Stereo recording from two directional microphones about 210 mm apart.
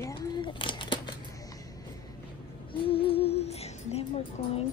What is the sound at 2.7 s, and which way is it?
A woman's voice, 25° left (ahead or behind).